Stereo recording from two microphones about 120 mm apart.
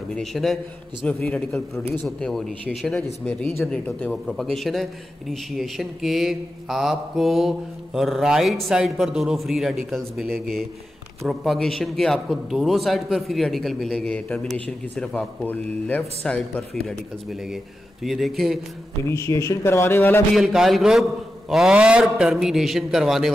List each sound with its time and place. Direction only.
0.1 s a man's voice: centre (ahead or behind)
19.0 s a man's voice: 25° left (ahead or behind)
20.3 s a man's voice: centre (ahead or behind)